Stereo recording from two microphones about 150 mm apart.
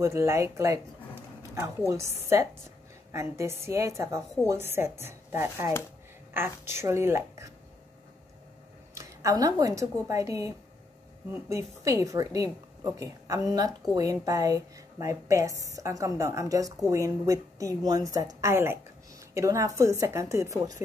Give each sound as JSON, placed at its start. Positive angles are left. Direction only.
{"t": 0.0, "sound": "a woman's voice", "side_deg": -20}
{"t": 1.9, "sound": "a woman's voice", "side_deg": -20}
{"t": 8.9, "sound": "a woman's voice", "side_deg": -20}